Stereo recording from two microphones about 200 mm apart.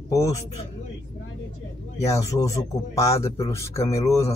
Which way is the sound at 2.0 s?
15° left (ahead or behind).